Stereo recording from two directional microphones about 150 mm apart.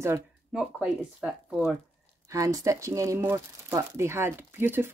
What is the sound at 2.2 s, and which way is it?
Speech, 20° right (ahead or behind).